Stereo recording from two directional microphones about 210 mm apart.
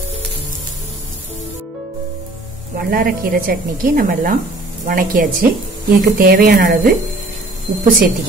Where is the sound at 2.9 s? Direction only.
45° right (ahead or behind).